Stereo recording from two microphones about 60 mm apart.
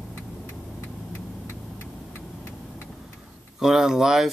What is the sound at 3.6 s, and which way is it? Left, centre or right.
Speech, centre.